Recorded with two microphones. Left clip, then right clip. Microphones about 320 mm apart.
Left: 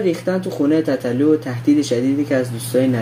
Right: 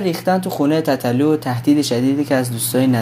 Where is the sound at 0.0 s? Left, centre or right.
Right.